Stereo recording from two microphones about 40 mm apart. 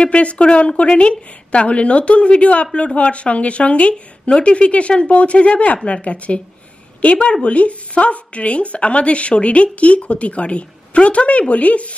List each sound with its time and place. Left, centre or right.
0.0 s a woman's voice: left